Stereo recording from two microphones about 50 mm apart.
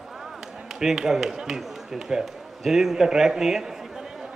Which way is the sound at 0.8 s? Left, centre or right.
Centre.